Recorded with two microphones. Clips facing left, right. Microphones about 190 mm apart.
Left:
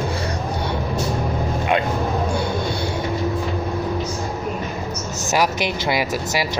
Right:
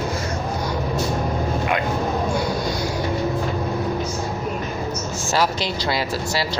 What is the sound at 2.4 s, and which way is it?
Vehicle, 30° left (ahead or behind).